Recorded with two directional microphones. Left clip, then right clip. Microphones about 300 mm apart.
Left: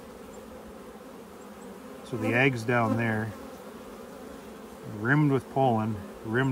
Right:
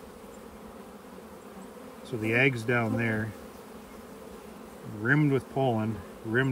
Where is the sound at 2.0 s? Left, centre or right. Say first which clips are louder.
Even; centre.